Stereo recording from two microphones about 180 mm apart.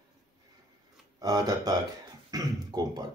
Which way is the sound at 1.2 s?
20° right (ahead or behind).